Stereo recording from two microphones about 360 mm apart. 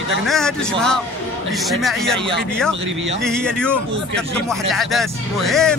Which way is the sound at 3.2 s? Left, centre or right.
Centre.